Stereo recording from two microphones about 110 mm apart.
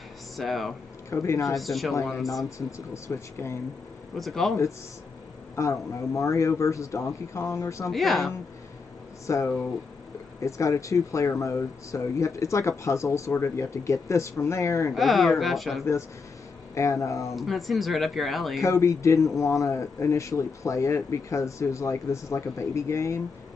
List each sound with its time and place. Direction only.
0.4 s speech: centre (ahead or behind)
1.1 s speech: 25° left (ahead or behind)
1.5 s speech: centre (ahead or behind)
2.9 s speech: 25° left (ahead or behind)
4.2 s speech: centre (ahead or behind)
5.6 s speech: 30° left (ahead or behind)
7.9 s speech: centre (ahead or behind)
9.2 s speech: 30° left (ahead or behind)
15.0 s speech: centre (ahead or behind)
16.7 s speech: 30° left (ahead or behind)
17.4 s speech: centre (ahead or behind)
18.7 s speech: 30° left (ahead or behind)